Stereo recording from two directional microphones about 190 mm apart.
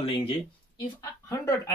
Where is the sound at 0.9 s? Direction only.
15° left (ahead or behind).